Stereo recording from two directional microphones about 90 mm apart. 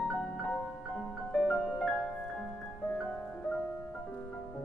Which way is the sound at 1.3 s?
5° left (ahead or behind).